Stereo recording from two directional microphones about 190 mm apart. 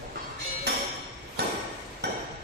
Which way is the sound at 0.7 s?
60° right (ahead or behind).